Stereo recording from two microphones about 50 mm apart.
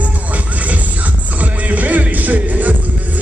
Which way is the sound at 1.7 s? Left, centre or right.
Right.